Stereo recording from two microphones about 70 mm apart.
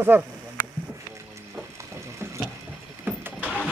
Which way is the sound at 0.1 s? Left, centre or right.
Right.